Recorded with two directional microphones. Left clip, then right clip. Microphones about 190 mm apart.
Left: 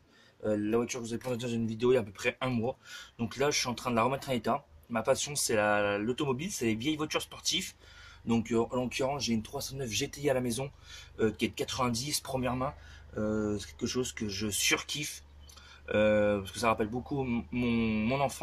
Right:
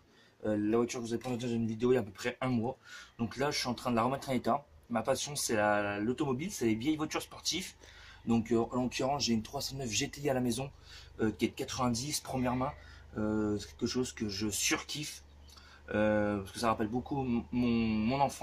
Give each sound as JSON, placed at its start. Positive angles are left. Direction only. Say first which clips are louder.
{"t": 0.4, "sound": "speech", "louder": "left 1 dB", "side_deg": 40}
{"t": 3.2, "sound": "speech", "louder": "left 4 dB", "side_deg": 40}
{"t": 8.3, "sound": "speech", "louder": "left 1 dB", "side_deg": 40}
{"t": 11.5, "sound": "speech", "louder": "left 2 dB", "side_deg": 40}